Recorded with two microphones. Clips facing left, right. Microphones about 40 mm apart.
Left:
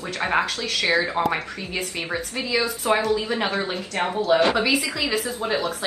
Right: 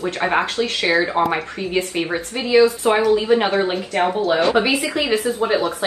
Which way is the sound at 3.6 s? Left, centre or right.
Right.